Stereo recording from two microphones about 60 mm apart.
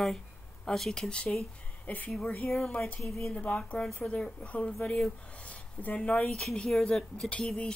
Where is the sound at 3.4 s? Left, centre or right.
Left.